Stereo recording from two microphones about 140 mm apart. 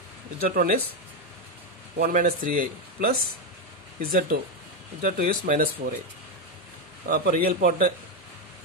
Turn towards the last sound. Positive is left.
turn(degrees=-75)  # may be behind; listen again after turning